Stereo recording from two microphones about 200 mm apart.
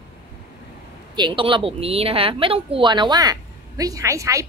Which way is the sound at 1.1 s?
25° right (ahead or behind).